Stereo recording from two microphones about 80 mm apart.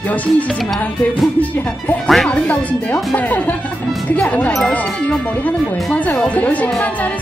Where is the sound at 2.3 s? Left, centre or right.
Centre.